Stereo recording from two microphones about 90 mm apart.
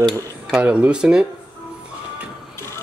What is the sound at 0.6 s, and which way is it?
Speech, 15° right (ahead or behind).